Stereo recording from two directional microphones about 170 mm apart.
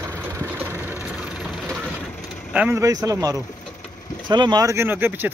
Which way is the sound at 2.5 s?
10° right (ahead or behind).